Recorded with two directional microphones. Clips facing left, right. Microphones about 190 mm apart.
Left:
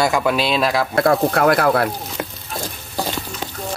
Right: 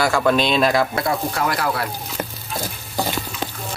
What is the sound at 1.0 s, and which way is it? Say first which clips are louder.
Speech: left 7 dB; 60° left (ahead or behind).